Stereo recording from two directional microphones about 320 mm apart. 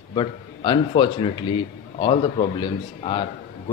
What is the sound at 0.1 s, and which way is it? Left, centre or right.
A man's voice, centre.